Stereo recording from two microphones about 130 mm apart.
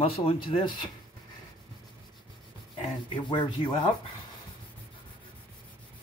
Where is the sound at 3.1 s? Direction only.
35° left (ahead or behind).